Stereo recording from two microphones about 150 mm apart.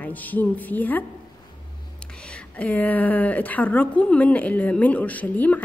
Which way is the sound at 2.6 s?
10° left (ahead or behind).